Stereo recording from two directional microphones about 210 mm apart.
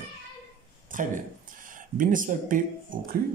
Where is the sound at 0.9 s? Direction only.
40° right (ahead or behind).